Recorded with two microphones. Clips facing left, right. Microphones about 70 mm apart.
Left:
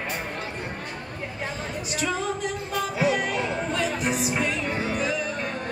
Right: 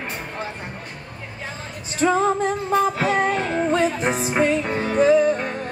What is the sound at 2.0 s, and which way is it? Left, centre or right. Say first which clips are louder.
Music: right 10 dB; right.